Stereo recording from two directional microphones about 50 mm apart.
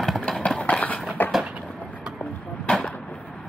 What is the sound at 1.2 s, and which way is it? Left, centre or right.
Vehicle, left.